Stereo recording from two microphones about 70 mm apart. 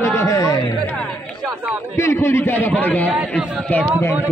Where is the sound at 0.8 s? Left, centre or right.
Centre.